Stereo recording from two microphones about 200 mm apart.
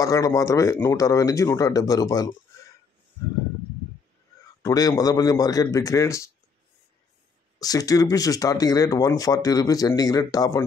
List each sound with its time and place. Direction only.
0.0 s speech: 15° left (ahead or behind)
4.6 s speech: 20° left (ahead or behind)
7.5 s speech: 20° left (ahead or behind)